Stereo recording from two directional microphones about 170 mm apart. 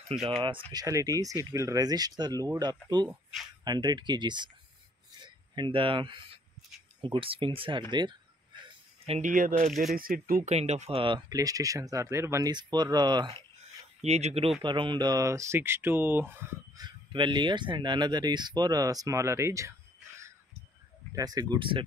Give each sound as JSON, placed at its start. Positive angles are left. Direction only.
{"t": 0.4, "sound": "speech", "side_deg": -30}
{"t": 9.0, "sound": "speech", "side_deg": -35}
{"t": 9.3, "sound": "speech", "side_deg": -55}
{"t": 10.5, "sound": "speech", "side_deg": -40}
{"t": 14.0, "sound": "speech", "side_deg": -40}
{"t": 14.6, "sound": "speech", "side_deg": -30}
{"t": 16.7, "sound": "speech", "side_deg": -25}
{"t": 21.1, "sound": "speech", "side_deg": -20}